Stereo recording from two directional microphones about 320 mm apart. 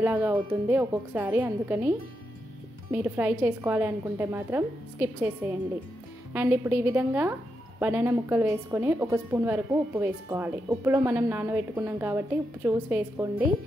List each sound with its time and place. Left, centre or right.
0.0 s a woman's voice: centre
6.3 s a woman's voice: centre